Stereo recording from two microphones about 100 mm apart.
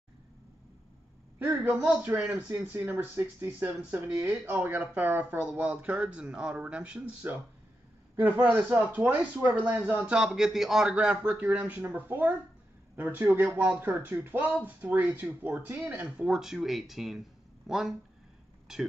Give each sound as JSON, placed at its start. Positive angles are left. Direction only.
{"t": 1.6, "sound": "speech", "side_deg": -20}